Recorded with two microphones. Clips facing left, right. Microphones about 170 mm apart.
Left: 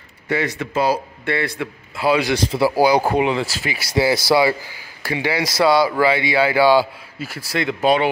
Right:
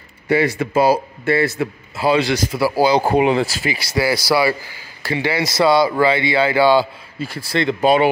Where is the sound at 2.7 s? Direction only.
15° left (ahead or behind).